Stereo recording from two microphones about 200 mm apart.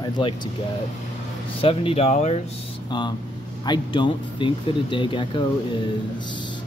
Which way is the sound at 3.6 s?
25° left (ahead or behind).